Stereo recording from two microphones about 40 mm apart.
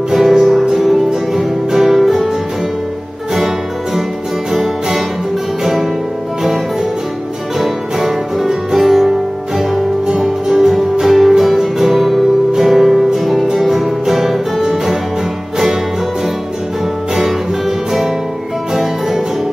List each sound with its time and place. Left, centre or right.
0.1 s music: centre
3.3 s music: centre
7.5 s music: centre
17.1 s music: centre